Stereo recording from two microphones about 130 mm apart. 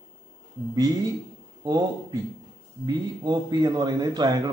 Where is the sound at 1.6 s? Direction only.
30° right (ahead or behind).